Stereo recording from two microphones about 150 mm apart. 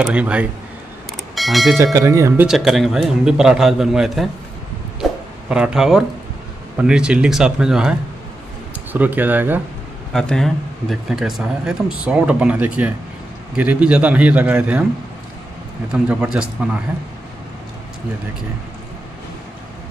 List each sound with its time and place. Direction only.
0.0 s a man's voice: 10° right (ahead or behind)
1.1 s vehicle: centre (ahead or behind)
1.8 s speech: 20° right (ahead or behind)
2.4 s speech: centre (ahead or behind)
5.0 s a sound: centre (ahead or behind)
5.5 s speech: 5° right (ahead or behind)
8.9 s a man's voice: 10° right (ahead or behind)
10.1 s a man's voice: 5° left (ahead or behind)
15.9 s speech: 5° right (ahead or behind)